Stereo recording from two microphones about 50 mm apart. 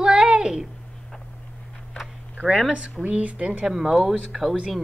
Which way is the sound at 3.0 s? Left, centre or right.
Right.